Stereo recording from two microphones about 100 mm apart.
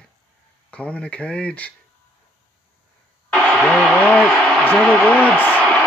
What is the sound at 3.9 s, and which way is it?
Speech, 10° left (ahead or behind).